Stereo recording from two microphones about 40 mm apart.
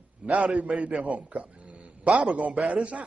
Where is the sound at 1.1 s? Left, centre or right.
Right.